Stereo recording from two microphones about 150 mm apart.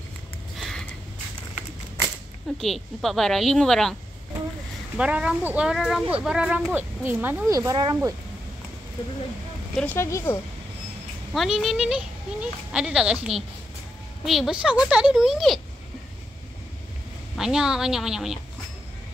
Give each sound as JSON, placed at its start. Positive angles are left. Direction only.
{"t": 0.6, "sound": "a sound", "side_deg": 5}
{"t": 2.6, "sound": "speech", "side_deg": 0}
{"t": 4.9, "sound": "speech", "side_deg": -5}
{"t": 9.8, "sound": "speech", "side_deg": 15}
{"t": 11.3, "sound": "speech", "side_deg": 0}
{"t": 17.4, "sound": "speech", "side_deg": -5}